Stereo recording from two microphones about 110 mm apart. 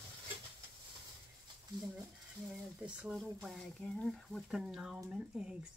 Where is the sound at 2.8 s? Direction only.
10° right (ahead or behind).